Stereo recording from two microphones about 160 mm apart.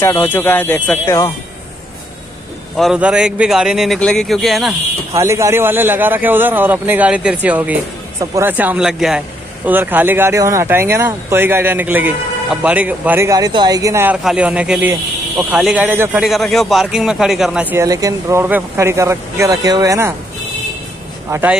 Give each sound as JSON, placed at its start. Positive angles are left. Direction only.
{"t": 0.0, "sound": "speech", "side_deg": 15}
{"t": 2.7, "sound": "speech", "side_deg": 0}
{"t": 5.1, "sound": "speech", "side_deg": -20}
{"t": 14.2, "sound": "speech", "side_deg": -5}
{"t": 17.8, "sound": "speech", "side_deg": -20}
{"t": 21.3, "sound": "speech", "side_deg": -10}